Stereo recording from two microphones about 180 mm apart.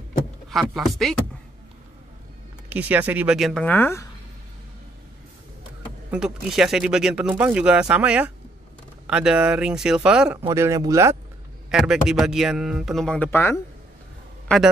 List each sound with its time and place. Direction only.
0.5 s speech: centre (ahead or behind)
2.7 s speech: 10° right (ahead or behind); by 4.1 s 15° left (ahead or behind)
6.0 s speech: 5° right (ahead or behind)
10.5 s speech: 15° right (ahead or behind)
11.7 s speech: 5° right (ahead or behind)